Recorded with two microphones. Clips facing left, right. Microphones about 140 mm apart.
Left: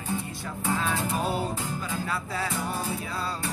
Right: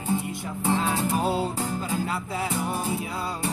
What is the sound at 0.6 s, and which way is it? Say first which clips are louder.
Music: right 3 dB; 25° right (ahead or behind).